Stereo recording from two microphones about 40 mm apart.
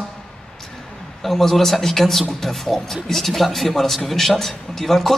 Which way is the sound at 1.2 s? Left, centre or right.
Centre.